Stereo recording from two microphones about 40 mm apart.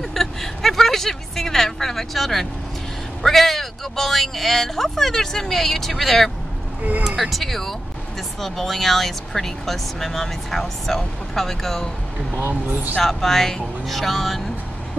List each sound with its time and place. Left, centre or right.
0.0 s a sound: centre
3.2 s speech: centre
6.8 s speech: right
7.2 s speech: centre
12.4 s speech: right
13.0 s speech: centre